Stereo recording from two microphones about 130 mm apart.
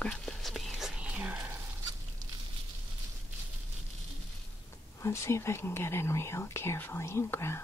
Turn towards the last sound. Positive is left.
turn(degrees=20)  # may be behind; listen again after turning